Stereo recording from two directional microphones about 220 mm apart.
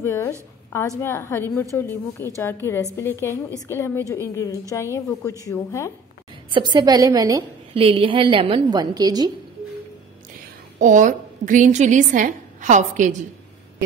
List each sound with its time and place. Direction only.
0.0 s a woman's voice: 10° left (ahead or behind)
6.5 s a woman's voice: 20° right (ahead or behind)
10.8 s a woman's voice: 35° right (ahead or behind)